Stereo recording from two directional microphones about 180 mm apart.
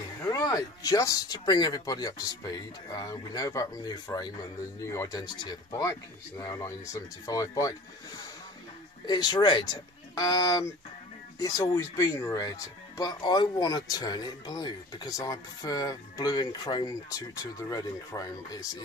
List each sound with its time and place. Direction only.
0.2 s speech: 20° left (ahead or behind)
9.0 s speech: 25° left (ahead or behind)